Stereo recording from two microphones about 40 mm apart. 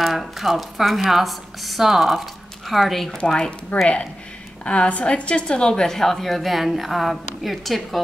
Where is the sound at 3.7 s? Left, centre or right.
Left.